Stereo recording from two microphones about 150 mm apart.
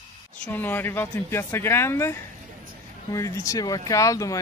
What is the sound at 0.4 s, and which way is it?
Speech, 10° left (ahead or behind).